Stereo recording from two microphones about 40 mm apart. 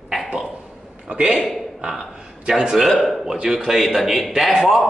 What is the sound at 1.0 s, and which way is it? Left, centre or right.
Speech, right.